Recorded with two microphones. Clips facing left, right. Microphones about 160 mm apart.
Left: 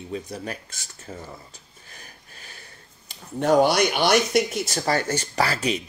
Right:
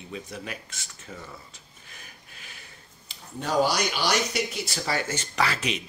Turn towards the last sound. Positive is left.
turn(degrees=35)  # may be behind; listen again after turning